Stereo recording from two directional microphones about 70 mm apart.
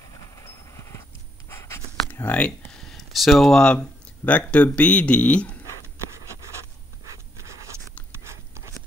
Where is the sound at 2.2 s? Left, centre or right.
Centre.